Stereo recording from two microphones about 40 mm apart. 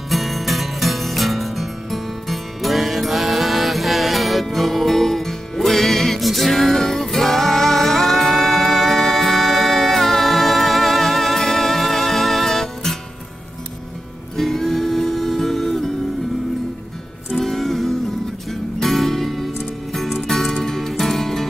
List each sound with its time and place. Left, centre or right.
0.1 s music: centre
14.3 s music: centre
17.4 s music: centre